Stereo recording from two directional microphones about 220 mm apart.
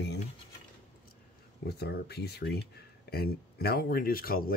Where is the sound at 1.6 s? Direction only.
45° left (ahead or behind).